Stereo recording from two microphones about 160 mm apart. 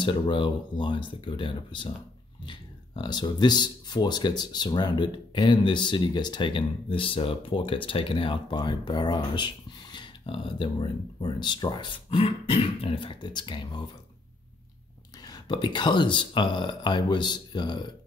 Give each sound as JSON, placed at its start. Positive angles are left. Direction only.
{"t": 0.0, "sound": "speech", "side_deg": 30}
{"t": 3.0, "sound": "speech", "side_deg": 25}
{"t": 15.2, "sound": "speech", "side_deg": 25}